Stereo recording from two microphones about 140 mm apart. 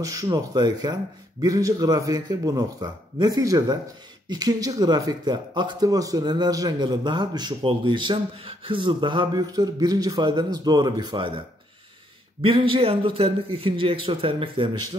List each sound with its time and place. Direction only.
0.0 s a man's voice: 25° right (ahead or behind)